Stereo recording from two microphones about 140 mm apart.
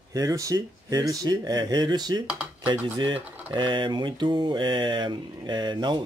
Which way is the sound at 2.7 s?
35° right (ahead or behind).